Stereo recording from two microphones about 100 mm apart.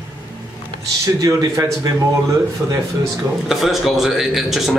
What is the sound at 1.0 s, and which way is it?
Speech, 35° right (ahead or behind).